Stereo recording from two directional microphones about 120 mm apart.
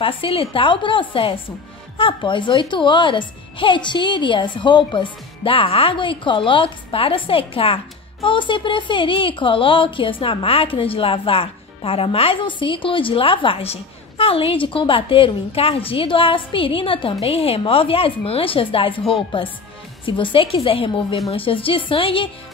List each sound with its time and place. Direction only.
0.0 s a woman's voice: 50° left (ahead or behind)